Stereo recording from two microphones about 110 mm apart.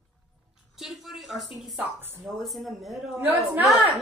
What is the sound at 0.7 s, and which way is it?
A woman's voice, centre (ahead or behind).